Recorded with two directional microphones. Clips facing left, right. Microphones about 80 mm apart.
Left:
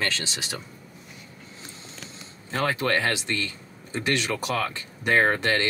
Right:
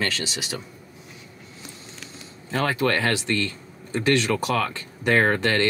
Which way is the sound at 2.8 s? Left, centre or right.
Centre.